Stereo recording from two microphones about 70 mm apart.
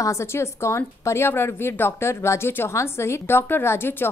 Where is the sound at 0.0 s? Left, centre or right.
Left.